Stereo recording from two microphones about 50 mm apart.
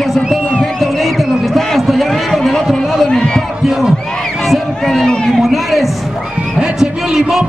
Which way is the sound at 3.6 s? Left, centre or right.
Centre.